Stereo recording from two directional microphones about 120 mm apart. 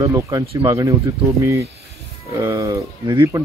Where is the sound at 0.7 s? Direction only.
30° right (ahead or behind).